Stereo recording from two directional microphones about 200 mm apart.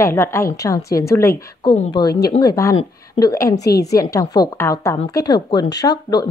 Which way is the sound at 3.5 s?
55° left (ahead or behind).